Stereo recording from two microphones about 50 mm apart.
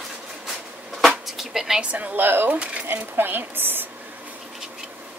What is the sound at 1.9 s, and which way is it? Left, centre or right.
Speech, right.